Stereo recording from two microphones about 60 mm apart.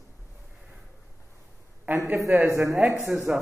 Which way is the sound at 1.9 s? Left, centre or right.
Right.